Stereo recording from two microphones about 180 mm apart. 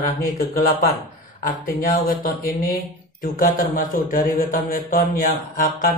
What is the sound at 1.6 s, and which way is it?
A man's voice, 55° left (ahead or behind).